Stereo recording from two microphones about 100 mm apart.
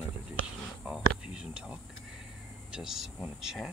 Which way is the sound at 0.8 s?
10° right (ahead or behind).